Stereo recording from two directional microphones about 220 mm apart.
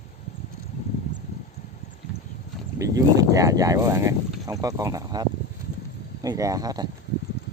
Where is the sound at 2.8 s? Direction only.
15° right (ahead or behind).